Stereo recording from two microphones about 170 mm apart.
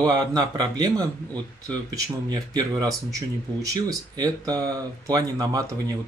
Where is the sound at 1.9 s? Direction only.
20° right (ahead or behind).